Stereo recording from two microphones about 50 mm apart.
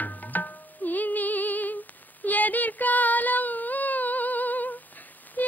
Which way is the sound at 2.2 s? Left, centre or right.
Left.